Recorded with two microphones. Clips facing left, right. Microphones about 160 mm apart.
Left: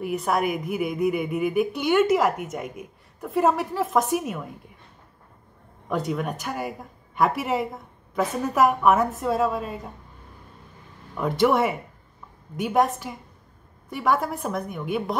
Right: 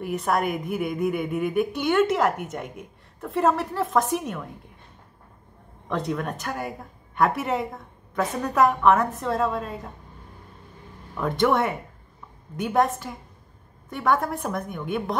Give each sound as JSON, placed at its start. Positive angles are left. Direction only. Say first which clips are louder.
{"t": 0.0, "sound": "a woman's voice", "louder": "even", "side_deg": 0}
{"t": 5.9, "sound": "a woman's voice", "louder": "left 1 dB", "side_deg": 5}
{"t": 11.1, "sound": "a woman's voice", "louder": "left 1 dB", "side_deg": 0}